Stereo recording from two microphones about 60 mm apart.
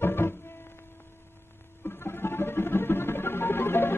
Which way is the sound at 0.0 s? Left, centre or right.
Left.